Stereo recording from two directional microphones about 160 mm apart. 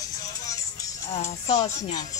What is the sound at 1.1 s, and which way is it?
Speech, 40° left (ahead or behind).